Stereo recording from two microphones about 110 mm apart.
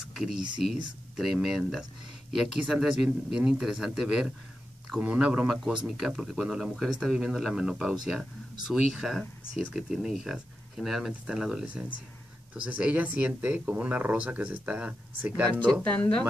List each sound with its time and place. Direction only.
0.0 s a sound: 5° right (ahead or behind)
0.6 s speech: 5° right (ahead or behind)
15.7 s speech: 10° left (ahead or behind)